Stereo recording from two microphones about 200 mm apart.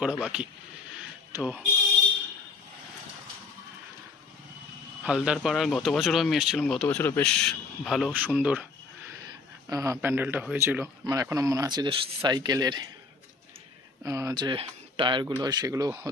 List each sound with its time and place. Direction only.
0.0 s speech: 5° right (ahead or behind)
5.0 s speech: 5° right (ahead or behind); by 12.8 s 20° right (ahead or behind)
14.0 s speech: 15° right (ahead or behind)